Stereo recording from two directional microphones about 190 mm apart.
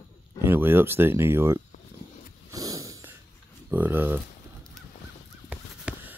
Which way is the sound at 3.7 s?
10° right (ahead or behind).